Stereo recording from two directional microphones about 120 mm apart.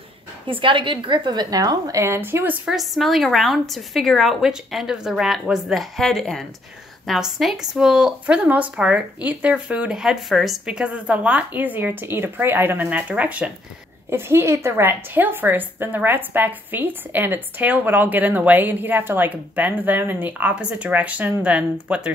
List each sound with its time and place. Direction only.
0.5 s a woman's voice: 45° right (ahead or behind); by 2.5 s 20° right (ahead or behind)
2.6 s a woman's voice: centre (ahead or behind)